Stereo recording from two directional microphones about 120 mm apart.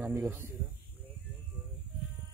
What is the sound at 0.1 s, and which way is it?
Speech, 20° right (ahead or behind).